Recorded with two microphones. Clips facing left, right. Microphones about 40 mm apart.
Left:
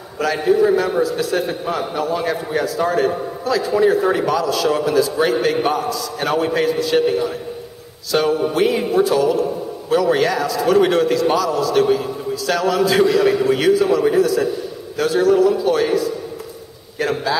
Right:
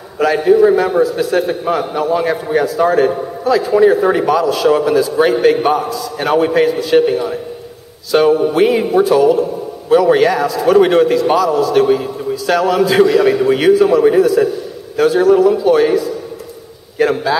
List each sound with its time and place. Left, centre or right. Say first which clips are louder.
0.2 s a man's voice: right 6 dB; centre